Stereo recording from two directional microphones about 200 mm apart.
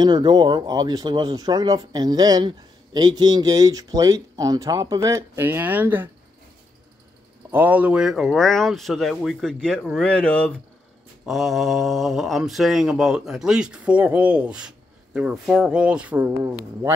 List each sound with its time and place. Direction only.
0.0 s speech: 20° right (ahead or behind)
7.5 s speech: 10° right (ahead or behind)